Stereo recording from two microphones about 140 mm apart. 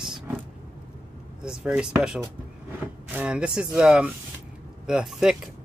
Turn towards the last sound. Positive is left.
turn(degrees=-5)  # may be behind; listen again after turning